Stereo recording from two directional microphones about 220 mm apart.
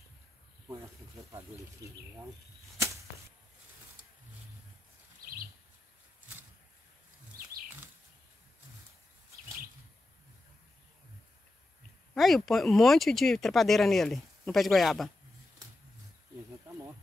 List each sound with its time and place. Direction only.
12.1 s speech: centre (ahead or behind)